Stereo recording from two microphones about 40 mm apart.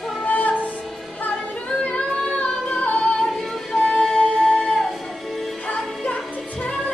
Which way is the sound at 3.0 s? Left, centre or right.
Centre.